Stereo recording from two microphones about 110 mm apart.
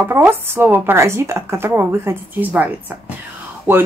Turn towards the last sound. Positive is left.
turn(degrees=-20)  # may be behind; listen again after turning